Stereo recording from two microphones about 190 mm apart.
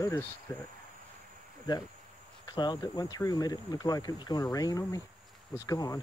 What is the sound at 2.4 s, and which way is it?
Speech, 20° left (ahead or behind).